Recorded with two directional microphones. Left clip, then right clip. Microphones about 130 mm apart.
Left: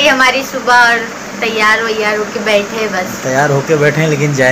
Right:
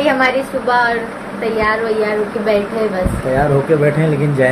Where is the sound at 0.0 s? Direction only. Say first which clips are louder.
Left 4 dB; 20° right (ahead or behind).